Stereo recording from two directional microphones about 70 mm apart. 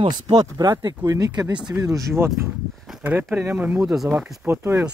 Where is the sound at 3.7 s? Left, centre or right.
Centre.